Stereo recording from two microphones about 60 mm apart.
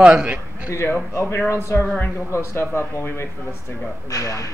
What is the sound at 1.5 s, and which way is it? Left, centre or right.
Speech, left.